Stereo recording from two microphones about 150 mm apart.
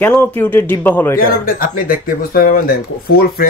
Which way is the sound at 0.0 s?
15° left (ahead or behind).